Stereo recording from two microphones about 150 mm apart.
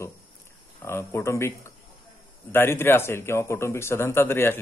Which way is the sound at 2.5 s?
15° left (ahead or behind).